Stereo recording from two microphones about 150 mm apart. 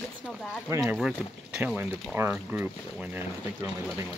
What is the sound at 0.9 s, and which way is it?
Speech, centre (ahead or behind).